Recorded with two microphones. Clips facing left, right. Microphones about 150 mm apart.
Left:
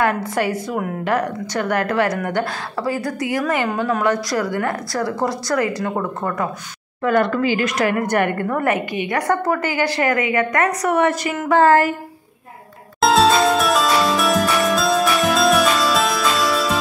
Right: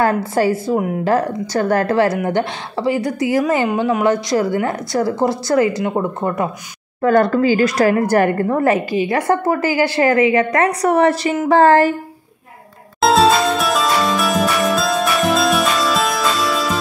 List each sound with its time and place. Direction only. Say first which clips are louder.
0.0 s a woman's voice: right 4 dB; 30° right (ahead or behind)
7.0 s a woman's voice: right 4 dB; 40° right (ahead or behind)
13.0 s music: right 1 dB; centre (ahead or behind)